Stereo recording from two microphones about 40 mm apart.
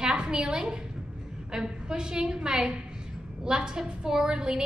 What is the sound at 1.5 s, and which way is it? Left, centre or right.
A woman's voice, centre.